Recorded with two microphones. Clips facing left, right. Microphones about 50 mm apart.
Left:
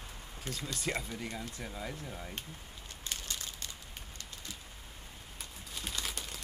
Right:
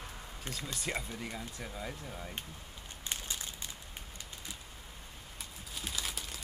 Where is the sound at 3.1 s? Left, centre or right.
Centre.